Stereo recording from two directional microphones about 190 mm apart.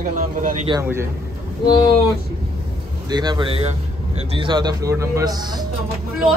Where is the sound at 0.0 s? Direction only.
45° right (ahead or behind).